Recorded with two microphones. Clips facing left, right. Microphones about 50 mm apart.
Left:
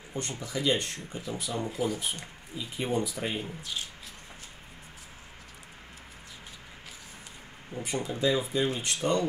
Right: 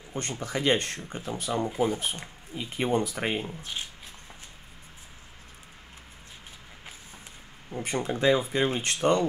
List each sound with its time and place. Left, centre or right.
0.1 s speech: right
2.5 s speech: right
3.4 s speech: right
7.8 s speech: right